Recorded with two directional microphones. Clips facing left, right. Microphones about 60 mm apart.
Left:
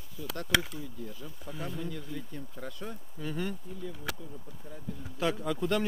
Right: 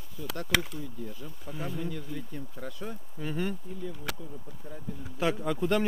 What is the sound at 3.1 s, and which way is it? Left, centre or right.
Speech, right.